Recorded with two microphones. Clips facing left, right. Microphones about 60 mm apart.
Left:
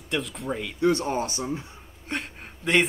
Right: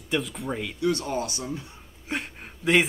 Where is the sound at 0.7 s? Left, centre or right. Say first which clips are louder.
Left 4 dB; left.